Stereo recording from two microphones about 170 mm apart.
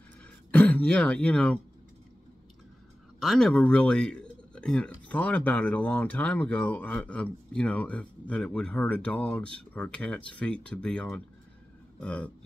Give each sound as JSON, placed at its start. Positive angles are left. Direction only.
{"t": 0.5, "sound": "speech", "side_deg": 10}
{"t": 3.2, "sound": "speech", "side_deg": 0}